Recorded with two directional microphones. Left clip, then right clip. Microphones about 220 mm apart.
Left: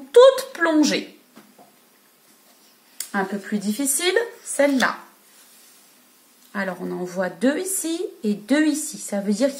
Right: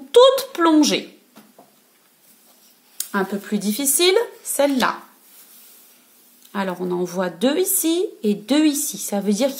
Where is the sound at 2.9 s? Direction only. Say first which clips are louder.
Right 2 dB; 35° right (ahead or behind).